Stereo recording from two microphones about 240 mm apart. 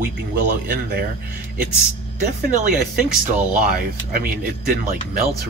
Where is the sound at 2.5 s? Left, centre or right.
Right.